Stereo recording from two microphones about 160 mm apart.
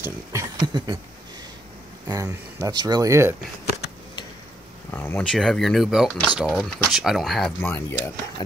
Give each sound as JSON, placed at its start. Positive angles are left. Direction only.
{"t": 0.0, "sound": "a sound", "side_deg": -20}
{"t": 2.0, "sound": "speech", "side_deg": -25}
{"t": 4.9, "sound": "speech", "side_deg": 10}
{"t": 7.6, "sound": "speech", "side_deg": 15}